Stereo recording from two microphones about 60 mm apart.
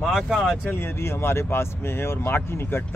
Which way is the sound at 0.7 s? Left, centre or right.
Left.